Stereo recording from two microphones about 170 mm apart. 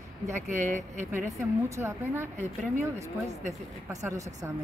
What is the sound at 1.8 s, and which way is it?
Speech, 15° right (ahead or behind).